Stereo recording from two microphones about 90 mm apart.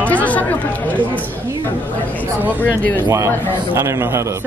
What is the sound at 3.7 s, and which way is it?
Speech, 25° right (ahead or behind).